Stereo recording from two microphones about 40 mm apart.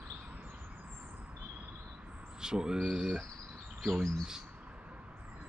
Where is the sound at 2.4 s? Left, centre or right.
Centre.